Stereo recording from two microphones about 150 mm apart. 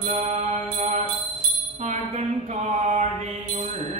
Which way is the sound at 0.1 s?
45° right (ahead or behind).